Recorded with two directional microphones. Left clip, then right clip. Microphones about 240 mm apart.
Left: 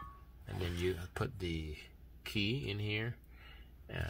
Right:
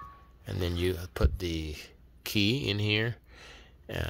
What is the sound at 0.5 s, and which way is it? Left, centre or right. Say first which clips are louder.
Speech: right 7 dB; right.